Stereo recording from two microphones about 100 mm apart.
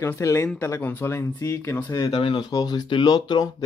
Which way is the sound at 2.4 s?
40° left (ahead or behind).